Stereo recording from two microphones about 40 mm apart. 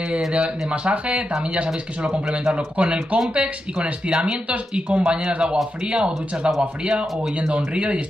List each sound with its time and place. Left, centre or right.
0.3 s speech: right
2.2 s speech: centre
2.5 s speech: right